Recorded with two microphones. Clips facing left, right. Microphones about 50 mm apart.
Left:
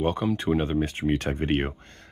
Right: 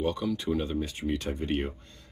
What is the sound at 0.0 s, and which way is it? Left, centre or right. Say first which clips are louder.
Speech: left 4 dB; left.